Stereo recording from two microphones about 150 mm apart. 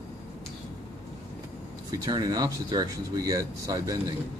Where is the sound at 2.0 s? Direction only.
25° right (ahead or behind).